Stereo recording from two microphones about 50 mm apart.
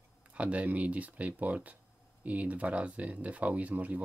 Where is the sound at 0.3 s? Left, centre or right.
Right.